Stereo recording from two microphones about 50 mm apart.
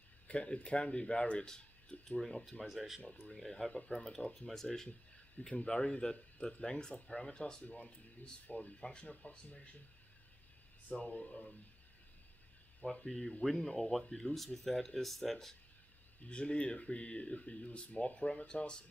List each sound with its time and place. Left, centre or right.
0.3 s speech: left; by 2.5 s centre
2.7 s speech: centre
3.1 s speech: left
3.3 s speech: centre
5.4 s speech: left
10.9 s speech: left
13.0 s speech: centre
16.3 s speech: left